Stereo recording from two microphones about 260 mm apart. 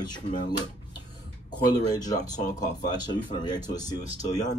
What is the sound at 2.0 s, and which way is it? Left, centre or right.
Speech, centre.